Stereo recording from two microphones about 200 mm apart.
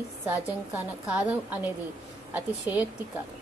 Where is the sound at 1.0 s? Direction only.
5° right (ahead or behind).